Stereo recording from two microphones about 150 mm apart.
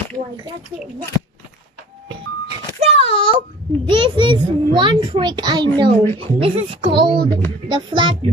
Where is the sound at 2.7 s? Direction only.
40° right (ahead or behind).